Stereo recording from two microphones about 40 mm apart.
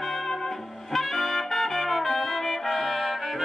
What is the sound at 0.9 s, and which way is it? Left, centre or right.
Brass instrument, centre.